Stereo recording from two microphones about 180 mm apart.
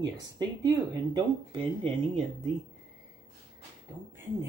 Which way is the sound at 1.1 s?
30° right (ahead or behind).